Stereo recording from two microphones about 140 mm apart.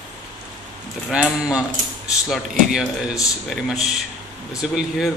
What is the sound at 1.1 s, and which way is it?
A man's voice, 5° right (ahead or behind).